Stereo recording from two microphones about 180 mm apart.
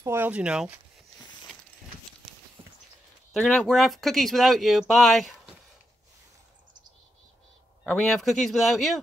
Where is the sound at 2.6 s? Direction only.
30° right (ahead or behind).